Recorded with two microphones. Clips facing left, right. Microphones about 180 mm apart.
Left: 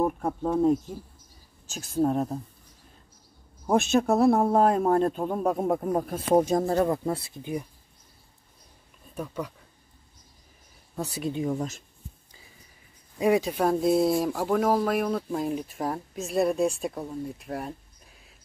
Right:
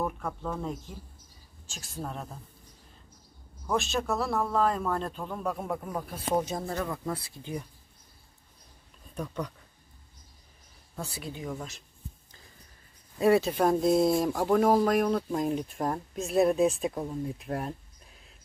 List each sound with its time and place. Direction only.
0.0 s speech: 35° left (ahead or behind)
2.0 s a man's voice: 45° left (ahead or behind)
3.7 s a man's voice: 50° left (ahead or behind)
7.2 s speech: 20° left (ahead or behind)
9.1 s speech: 5° left (ahead or behind)
11.0 s speech: 20° left (ahead or behind)
11.5 s a man's voice: 45° left (ahead or behind)
13.2 s speech: 15° left (ahead or behind)